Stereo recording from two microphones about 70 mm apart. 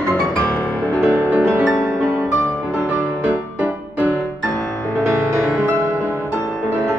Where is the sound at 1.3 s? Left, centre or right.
Right.